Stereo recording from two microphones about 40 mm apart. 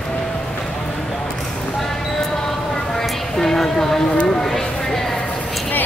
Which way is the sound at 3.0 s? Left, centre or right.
Centre.